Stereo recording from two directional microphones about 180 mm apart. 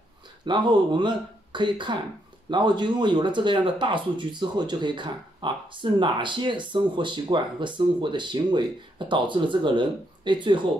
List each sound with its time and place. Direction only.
0.5 s speech: 25° right (ahead or behind)